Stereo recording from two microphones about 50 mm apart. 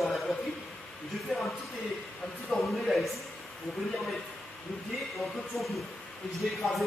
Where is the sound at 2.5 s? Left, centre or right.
Centre.